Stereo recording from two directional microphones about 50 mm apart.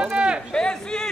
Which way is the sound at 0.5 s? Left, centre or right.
Centre.